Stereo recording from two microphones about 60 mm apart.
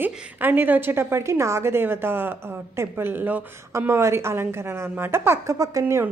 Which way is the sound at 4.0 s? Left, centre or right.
Right.